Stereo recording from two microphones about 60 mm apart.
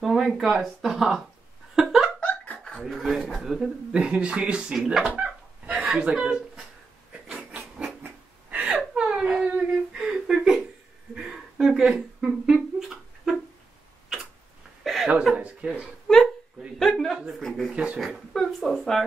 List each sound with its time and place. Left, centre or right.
0.0 s speech: centre
1.8 s a sound: centre
2.1 s laughter: left
2.6 s speech: centre
3.9 s speech: centre
8.5 s whimper: right
11.1 s a sound: centre
11.9 s speech: centre
12.7 s a sound: centre
14.8 s chuckle: centre
15.3 s speech: right
16.7 s speech: centre
17.7 s speech: centre
18.0 s speech: centre